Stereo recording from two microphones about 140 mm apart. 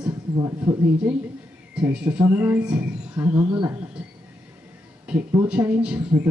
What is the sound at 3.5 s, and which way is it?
Speech, 25° right (ahead or behind).